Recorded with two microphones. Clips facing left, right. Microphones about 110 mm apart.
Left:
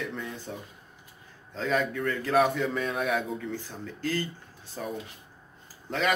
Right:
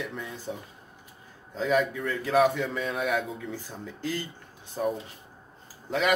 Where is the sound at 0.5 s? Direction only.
10° right (ahead or behind).